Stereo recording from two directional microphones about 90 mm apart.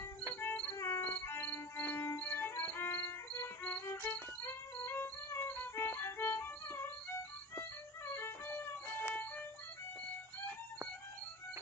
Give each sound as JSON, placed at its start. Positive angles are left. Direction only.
{"t": 0.4, "sound": "music", "side_deg": 25}
{"t": 8.1, "sound": "music", "side_deg": 25}